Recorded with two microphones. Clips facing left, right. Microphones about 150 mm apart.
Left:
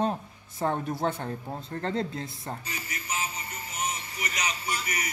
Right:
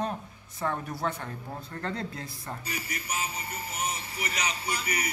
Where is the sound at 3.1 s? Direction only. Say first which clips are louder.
Left 1 dB; 10° right (ahead or behind).